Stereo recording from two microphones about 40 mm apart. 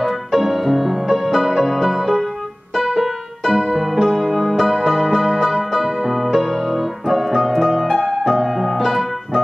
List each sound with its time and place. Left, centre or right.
0.0 s music: centre